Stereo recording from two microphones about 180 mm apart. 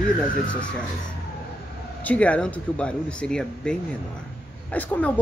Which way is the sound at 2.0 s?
5° left (ahead or behind).